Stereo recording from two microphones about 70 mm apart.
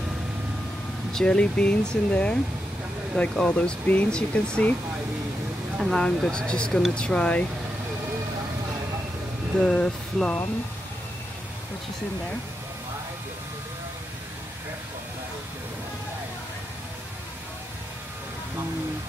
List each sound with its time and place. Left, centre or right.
1.1 s speech: centre
5.8 s speech: centre
9.6 s speech: centre